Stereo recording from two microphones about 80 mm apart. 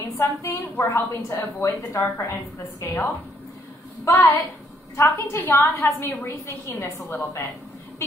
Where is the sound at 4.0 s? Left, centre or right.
Left.